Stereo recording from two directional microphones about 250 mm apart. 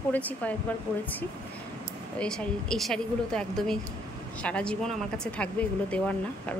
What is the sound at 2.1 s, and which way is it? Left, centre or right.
Speech, centre.